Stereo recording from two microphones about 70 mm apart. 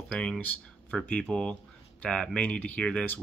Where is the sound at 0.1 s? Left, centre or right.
Centre.